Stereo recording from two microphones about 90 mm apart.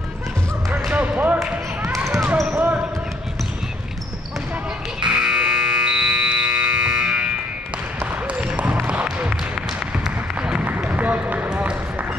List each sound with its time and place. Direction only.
0.9 s basketball bounce: 15° right (ahead or behind)
2.5 s basketball bounce: 20° right (ahead or behind)
5.0 s music: 10° right (ahead or behind)
8.0 s basketball bounce: 15° right (ahead or behind)